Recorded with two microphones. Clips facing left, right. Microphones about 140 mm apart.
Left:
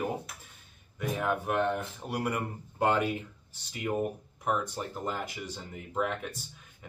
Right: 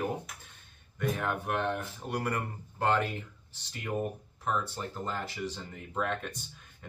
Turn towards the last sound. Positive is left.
turn(degrees=5)  # may be behind; listen again after turning